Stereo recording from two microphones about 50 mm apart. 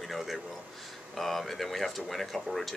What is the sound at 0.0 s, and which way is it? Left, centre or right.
A man's voice, centre.